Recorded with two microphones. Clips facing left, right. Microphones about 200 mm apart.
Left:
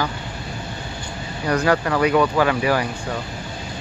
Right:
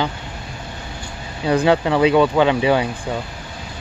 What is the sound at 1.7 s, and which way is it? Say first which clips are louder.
Speech: right 3 dB; 20° right (ahead or behind).